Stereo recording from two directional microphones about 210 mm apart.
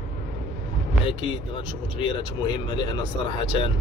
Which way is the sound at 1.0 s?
25° left (ahead or behind).